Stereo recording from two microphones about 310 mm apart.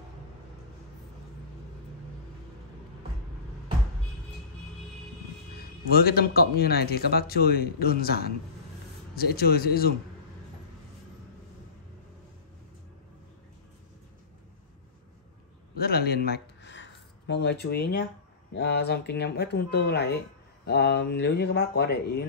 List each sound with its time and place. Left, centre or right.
5.9 s speech: left
15.8 s a sound: left
18.5 s speech: left